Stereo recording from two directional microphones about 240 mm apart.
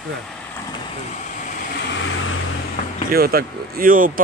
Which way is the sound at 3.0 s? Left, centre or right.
Right.